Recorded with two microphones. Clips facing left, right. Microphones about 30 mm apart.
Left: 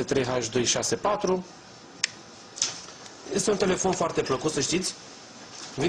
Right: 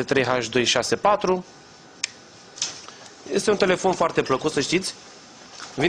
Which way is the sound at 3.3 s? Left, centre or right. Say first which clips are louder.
Right 5 dB; right.